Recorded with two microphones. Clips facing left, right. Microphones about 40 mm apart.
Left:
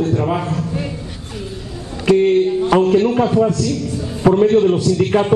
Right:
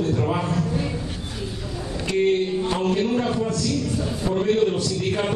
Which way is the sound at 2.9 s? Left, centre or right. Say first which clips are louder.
Left 8 dB; left.